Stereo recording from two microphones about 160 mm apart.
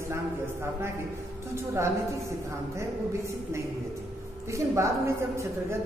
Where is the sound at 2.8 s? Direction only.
15° right (ahead or behind).